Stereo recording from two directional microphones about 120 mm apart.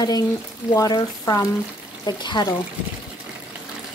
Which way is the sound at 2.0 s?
40° left (ahead or behind).